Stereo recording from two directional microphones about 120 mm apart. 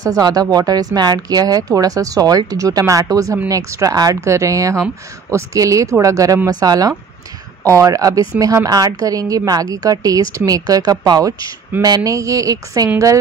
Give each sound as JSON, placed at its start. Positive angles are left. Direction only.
{"t": 0.0, "sound": "speech", "side_deg": -30}